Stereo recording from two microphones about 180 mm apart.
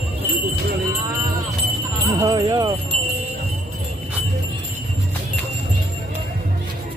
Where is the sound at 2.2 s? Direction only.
20° right (ahead or behind).